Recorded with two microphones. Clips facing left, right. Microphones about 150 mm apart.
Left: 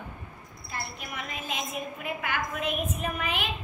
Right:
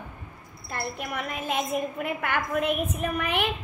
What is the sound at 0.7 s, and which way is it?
A woman's voice, 60° right (ahead or behind).